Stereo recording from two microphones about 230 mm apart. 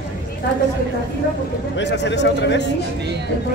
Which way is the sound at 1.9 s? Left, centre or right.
Left.